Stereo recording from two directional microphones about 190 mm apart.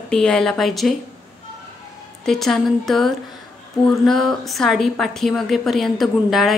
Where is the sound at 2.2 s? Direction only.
Centre (ahead or behind).